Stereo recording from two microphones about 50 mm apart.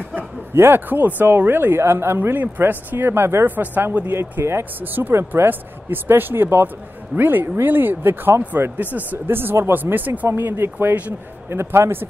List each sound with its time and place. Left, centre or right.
0.1 s speech: right
3.1 s speech: right
3.4 s speech: right
4.1 s speech: right
8.7 s speech: right